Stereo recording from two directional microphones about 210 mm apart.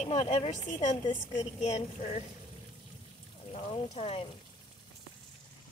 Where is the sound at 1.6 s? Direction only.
35° left (ahead or behind).